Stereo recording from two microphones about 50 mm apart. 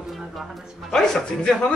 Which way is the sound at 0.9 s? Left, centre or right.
Centre.